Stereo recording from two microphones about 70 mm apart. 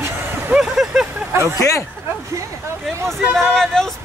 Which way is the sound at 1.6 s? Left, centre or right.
Left.